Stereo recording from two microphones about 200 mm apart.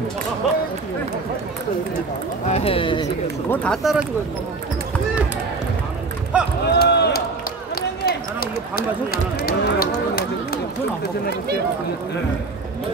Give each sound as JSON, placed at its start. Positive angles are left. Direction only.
{"t": 2.5, "sound": "speech", "side_deg": 30}
{"t": 3.4, "sound": "speech", "side_deg": 5}
{"t": 6.3, "sound": "run", "side_deg": -5}
{"t": 6.7, "sound": "a sound", "side_deg": 55}
{"t": 7.7, "sound": "run", "side_deg": 50}